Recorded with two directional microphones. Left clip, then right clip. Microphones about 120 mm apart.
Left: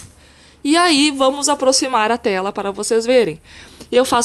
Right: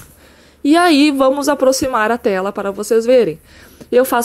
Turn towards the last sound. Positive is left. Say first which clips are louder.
# right 2 dB
turn(degrees=-15)  # may be behind; listen again after turning